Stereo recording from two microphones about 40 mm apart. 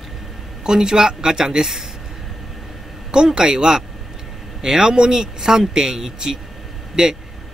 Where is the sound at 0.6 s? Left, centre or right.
Centre.